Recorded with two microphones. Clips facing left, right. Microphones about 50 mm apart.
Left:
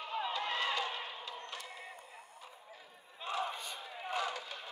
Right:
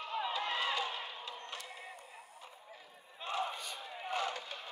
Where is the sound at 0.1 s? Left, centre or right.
Centre.